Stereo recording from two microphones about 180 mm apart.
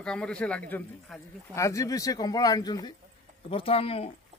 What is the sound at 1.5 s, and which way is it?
A man's voice, 15° left (ahead or behind).